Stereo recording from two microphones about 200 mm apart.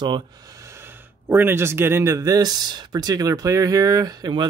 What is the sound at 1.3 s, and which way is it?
Speech, 10° right (ahead or behind).